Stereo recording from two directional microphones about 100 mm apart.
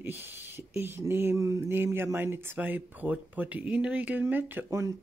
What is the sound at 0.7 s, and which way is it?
Speech, 25° right (ahead or behind).